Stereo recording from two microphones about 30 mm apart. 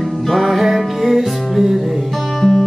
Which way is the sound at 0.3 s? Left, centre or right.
Centre.